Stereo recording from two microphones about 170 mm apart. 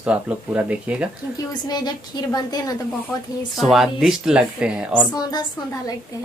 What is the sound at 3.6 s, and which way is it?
Speech, centre (ahead or behind).